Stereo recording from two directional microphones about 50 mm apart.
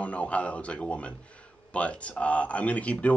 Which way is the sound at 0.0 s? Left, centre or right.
Left.